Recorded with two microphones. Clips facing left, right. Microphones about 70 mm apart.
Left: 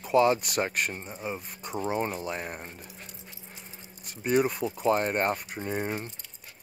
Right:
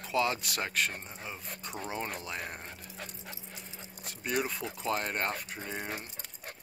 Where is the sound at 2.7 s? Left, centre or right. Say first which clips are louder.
Even; right.